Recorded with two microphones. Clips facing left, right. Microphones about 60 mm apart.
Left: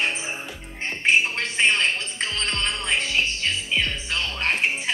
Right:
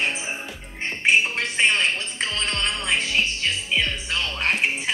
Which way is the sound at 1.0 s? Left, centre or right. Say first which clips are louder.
Right 1 dB; centre.